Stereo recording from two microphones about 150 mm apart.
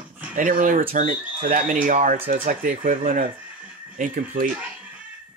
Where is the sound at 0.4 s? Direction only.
60° right (ahead or behind).